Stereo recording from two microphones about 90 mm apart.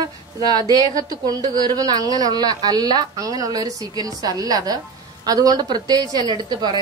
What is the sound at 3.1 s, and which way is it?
A woman's voice, 40° right (ahead or behind).